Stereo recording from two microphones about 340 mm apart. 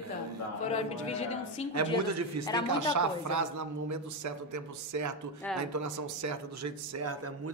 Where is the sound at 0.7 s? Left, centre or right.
Centre.